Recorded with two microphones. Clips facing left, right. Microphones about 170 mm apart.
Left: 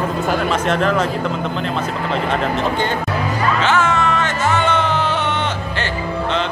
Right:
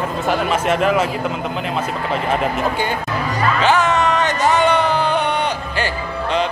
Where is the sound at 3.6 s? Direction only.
15° right (ahead or behind).